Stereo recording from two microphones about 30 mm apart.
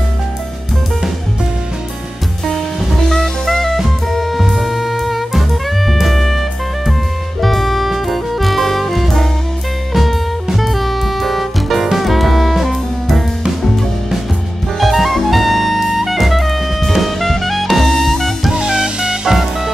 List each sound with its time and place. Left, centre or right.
2.4 s music: centre
7.4 s music: centre
14.8 s jazz: centre
17.7 s music: centre
18.5 s music: right